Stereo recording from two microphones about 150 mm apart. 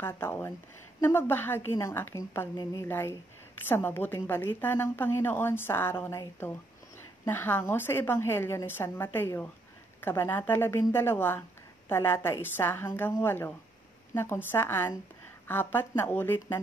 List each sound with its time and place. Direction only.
0.0 s a woman's voice: 15° left (ahead or behind)
2.5 s a woman's voice: 25° left (ahead or behind)